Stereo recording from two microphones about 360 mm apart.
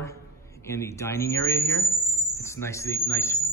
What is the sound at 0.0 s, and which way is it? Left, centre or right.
A man's voice, centre.